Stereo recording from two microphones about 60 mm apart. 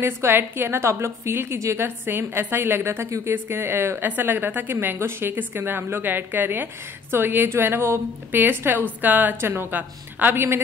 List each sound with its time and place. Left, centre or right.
0.0 s a woman's voice: right